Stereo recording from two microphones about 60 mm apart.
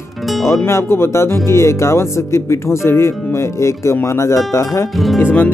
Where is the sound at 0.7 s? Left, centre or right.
Left.